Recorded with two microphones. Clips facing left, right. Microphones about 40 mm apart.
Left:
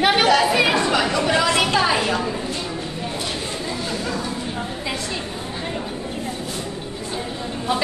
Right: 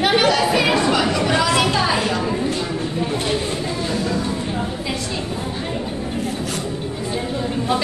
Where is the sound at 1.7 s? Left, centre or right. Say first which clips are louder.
Even; centre.